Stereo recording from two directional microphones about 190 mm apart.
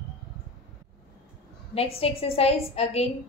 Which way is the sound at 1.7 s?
30° left (ahead or behind).